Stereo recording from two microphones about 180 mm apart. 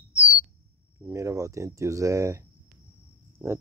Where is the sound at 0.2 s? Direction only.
30° right (ahead or behind).